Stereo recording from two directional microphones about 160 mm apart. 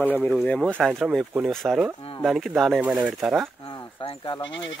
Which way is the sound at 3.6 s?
30° left (ahead or behind).